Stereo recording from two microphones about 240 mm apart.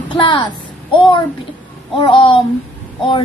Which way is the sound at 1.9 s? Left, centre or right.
Left.